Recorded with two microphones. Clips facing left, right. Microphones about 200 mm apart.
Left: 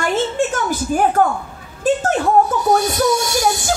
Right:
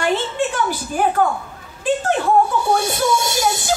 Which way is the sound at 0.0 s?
45° left (ahead or behind).